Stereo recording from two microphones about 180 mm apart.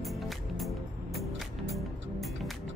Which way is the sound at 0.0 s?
Centre (ahead or behind).